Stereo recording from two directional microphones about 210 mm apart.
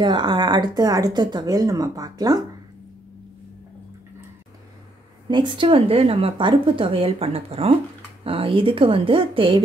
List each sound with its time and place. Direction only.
0.0 s speech: 20° right (ahead or behind)
5.3 s speech: 20° right (ahead or behind)